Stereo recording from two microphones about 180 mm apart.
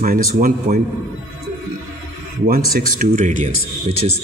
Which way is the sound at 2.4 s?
50° right (ahead or behind).